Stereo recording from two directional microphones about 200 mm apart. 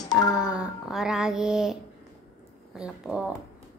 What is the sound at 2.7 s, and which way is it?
Speech, 5° right (ahead or behind).